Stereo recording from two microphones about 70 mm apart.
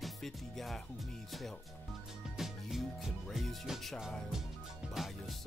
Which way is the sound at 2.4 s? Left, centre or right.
Centre.